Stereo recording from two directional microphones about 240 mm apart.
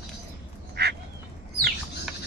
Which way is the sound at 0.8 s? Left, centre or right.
Right.